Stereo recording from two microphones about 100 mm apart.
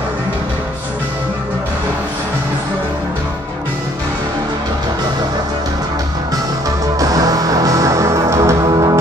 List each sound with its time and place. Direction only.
7.0 s music: 35° right (ahead or behind)